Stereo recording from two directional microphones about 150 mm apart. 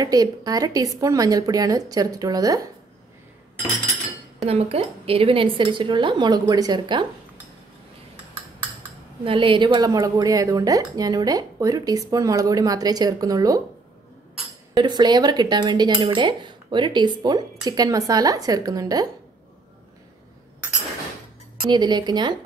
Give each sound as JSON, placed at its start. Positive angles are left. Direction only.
{"t": 0.0, "sound": "a woman's voice", "side_deg": -25}
{"t": 4.5, "sound": "speech", "side_deg": -40}
{"t": 9.2, "sound": "a woman's voice", "side_deg": -35}
{"t": 14.7, "sound": "a woman's voice", "side_deg": -30}
{"t": 21.6, "sound": "a woman's voice", "side_deg": -30}